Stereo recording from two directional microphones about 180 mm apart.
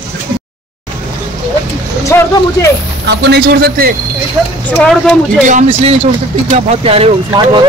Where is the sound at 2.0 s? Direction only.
15° left (ahead or behind).